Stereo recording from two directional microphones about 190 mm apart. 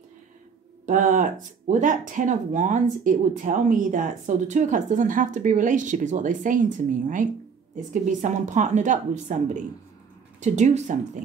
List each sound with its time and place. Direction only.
0.8 s a woman's voice: 45° right (ahead or behind)
10.4 s a woman's voice: 40° right (ahead or behind)